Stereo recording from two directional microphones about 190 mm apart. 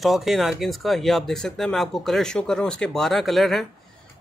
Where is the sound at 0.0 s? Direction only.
Centre (ahead or behind).